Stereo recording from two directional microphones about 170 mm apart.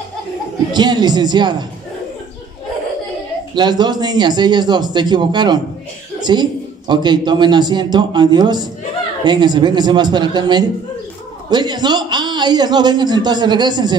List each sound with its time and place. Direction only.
0.7 s a man's voice: 25° right (ahead or behind)
3.5 s a man's voice: 25° right (ahead or behind)